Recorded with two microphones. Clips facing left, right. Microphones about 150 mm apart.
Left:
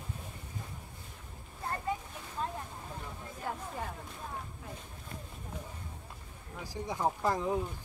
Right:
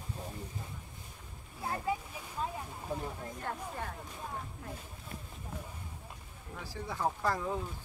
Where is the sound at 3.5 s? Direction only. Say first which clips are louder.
Left 2 dB; 5° left (ahead or behind).